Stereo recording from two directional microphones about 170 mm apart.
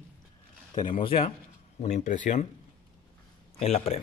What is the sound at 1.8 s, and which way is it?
Speech, 45° left (ahead or behind).